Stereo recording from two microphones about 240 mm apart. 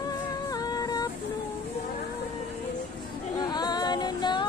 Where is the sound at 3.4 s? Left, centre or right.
Centre.